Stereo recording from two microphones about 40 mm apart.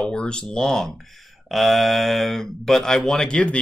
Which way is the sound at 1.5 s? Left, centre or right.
Centre.